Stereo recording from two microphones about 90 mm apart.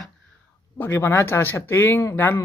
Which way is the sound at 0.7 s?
25° left (ahead or behind).